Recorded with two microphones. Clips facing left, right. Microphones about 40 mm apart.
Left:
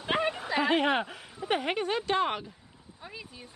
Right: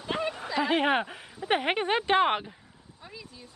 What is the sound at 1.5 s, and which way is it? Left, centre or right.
Speech, right.